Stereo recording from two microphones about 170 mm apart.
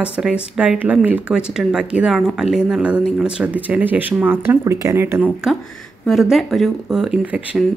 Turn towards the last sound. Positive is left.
turn(degrees=-10)  # may be behind; listen again after turning